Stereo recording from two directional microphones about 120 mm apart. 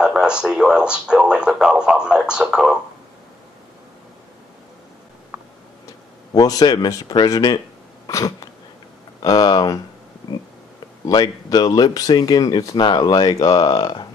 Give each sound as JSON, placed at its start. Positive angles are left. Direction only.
{"t": 0.0, "sound": "speech", "side_deg": -5}
{"t": 6.3, "sound": "speech", "side_deg": 30}
{"t": 8.1, "sound": "throat clearing", "side_deg": 30}
{"t": 9.2, "sound": "speech", "side_deg": 35}
{"t": 10.3, "sound": "a sound", "side_deg": 35}
{"t": 11.1, "sound": "speech", "side_deg": 35}